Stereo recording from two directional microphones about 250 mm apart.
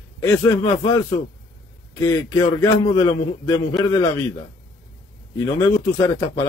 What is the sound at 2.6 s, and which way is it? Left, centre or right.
Speech, centre.